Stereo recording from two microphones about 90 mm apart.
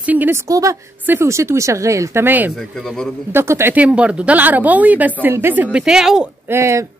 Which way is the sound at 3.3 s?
25° right (ahead or behind).